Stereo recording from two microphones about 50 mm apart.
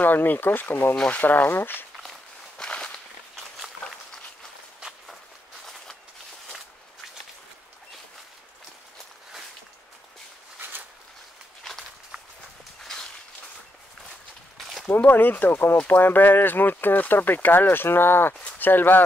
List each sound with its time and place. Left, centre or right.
0.0 s speech: left
0.9 s speech: left
1.2 s speech: left
1.5 s speech: left
2.5 s walk: centre
14.6 s a sound: centre
14.9 s speech: left